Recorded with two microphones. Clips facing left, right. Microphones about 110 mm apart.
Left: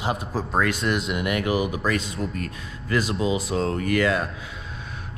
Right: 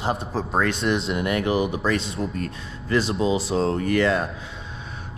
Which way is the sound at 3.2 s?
35° right (ahead or behind).